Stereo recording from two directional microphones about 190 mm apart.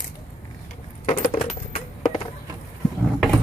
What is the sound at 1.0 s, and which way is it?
Coin, 40° left (ahead or behind).